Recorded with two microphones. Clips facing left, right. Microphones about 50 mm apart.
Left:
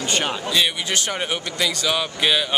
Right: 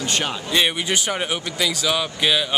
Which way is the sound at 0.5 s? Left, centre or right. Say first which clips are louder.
Right 3 dB; centre.